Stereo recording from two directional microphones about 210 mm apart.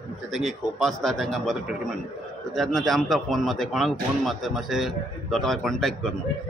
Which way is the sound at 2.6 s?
Centre (ahead or behind).